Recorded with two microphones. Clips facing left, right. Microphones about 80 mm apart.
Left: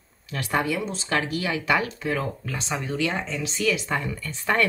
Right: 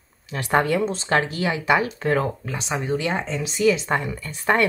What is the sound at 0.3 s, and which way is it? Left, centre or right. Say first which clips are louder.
Speech: right 5 dB; right.